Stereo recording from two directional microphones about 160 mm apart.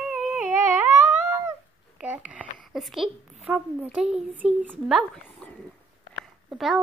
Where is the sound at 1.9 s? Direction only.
10° right (ahead or behind).